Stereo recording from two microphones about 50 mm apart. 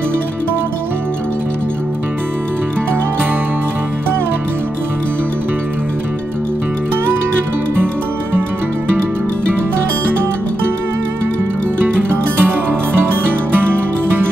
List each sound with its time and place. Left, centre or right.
7.7 s music: right
11.8 s music: right